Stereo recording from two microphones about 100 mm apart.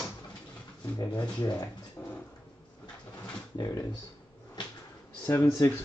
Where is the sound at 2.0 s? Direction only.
20° left (ahead or behind).